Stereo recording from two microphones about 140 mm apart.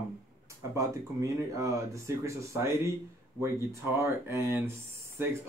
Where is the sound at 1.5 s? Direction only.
20° right (ahead or behind).